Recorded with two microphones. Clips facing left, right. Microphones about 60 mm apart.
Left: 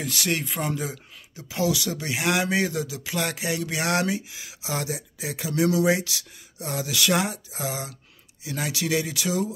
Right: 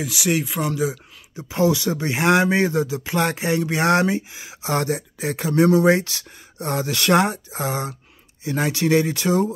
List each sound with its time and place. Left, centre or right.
0.0 s speech: centre
1.3 s speech: right
4.6 s speech: right